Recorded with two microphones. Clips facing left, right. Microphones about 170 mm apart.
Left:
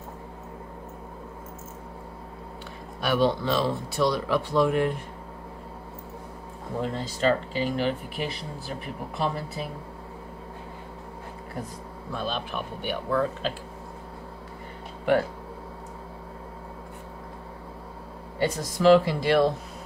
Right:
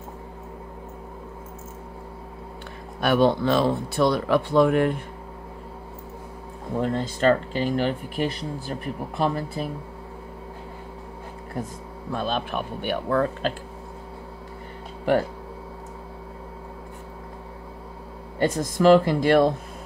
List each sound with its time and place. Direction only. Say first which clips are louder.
3.0 s speech: right 4 dB; 55° right (ahead or behind)
6.8 s speech: right 4 dB; 50° right (ahead or behind)
8.2 s speech: right 5 dB; centre (ahead or behind)
9.2 s speech: right 4 dB; 45° right (ahead or behind)
12.1 s speech: right 4 dB; 50° right (ahead or behind)
18.4 s speech: right 3 dB; 50° right (ahead or behind)